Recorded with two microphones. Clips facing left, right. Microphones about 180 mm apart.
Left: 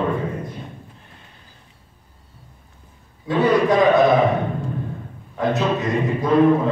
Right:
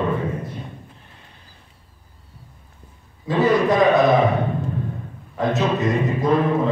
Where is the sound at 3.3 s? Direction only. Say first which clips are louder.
Left 1 dB; centre (ahead or behind).